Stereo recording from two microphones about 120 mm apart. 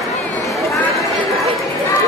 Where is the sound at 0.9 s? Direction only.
Centre (ahead or behind).